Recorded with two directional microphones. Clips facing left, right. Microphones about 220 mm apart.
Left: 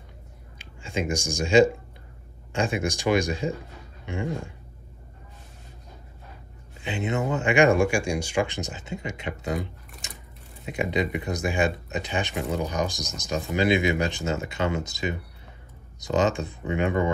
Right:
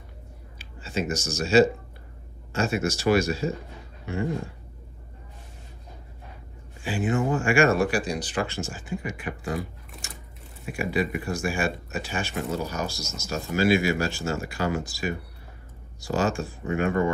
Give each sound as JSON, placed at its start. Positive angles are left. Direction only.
{"t": 0.6, "sound": "speech", "side_deg": 15}
{"t": 6.8, "sound": "speech", "side_deg": 20}
{"t": 10.7, "sound": "speech", "side_deg": 20}